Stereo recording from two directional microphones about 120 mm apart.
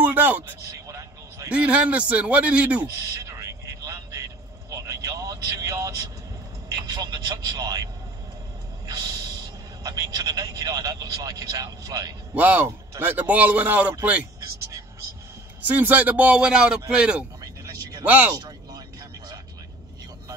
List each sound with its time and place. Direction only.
0.0 s vehicle: 15° right (ahead or behind)
0.8 s vehicle: 25° right (ahead or behind)
1.5 s a man's voice: 10° right (ahead or behind)
3.3 s vehicle: 25° right (ahead or behind)
6.9 s speech: 35° right (ahead or behind)
8.8 s a sound: 35° right (ahead or behind)
9.8 s speech: 30° right (ahead or behind)
12.4 s a man's voice: 15° right (ahead or behind)
15.6 s a man's voice: 15° right (ahead or behind)
17.4 s vehicle: 30° right (ahead or behind)
18.0 s a man's voice: 15° right (ahead or behind)
18.3 s a sound: 35° right (ahead or behind)